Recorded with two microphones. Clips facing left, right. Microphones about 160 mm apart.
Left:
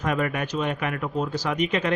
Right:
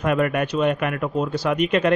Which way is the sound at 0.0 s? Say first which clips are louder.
Right 5 dB; 60° right (ahead or behind).